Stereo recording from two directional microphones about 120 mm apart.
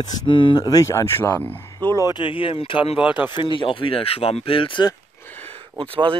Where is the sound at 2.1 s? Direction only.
45° left (ahead or behind).